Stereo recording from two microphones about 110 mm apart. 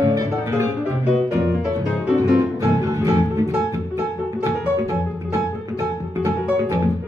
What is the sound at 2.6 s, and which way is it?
Music, 30° right (ahead or behind).